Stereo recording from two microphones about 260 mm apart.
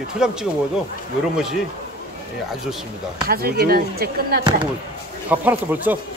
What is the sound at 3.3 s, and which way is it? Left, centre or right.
Speech, right.